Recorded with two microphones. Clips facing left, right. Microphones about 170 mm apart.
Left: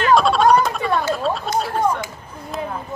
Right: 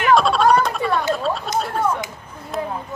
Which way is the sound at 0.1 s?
Centre (ahead or behind).